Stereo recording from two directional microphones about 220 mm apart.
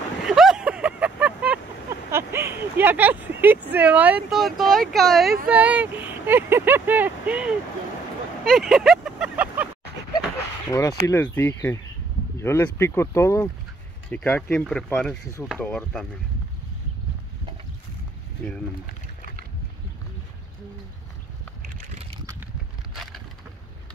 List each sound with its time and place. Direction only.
0.2 s vehicle: centre (ahead or behind)
5.5 s speech: 5° right (ahead or behind)
8.5 s vehicle: centre (ahead or behind)
10.7 s speech: 15° left (ahead or behind)
22.1 s a sound: 15° right (ahead or behind)